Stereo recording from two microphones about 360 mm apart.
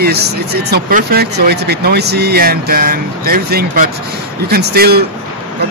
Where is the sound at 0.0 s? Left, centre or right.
Right.